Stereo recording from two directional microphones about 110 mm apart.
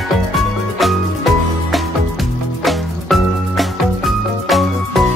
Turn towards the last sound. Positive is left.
turn(degrees=0)  # may be behind; listen again after turning